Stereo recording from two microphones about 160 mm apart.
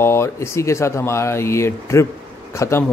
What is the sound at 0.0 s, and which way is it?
Speech, 15° left (ahead or behind).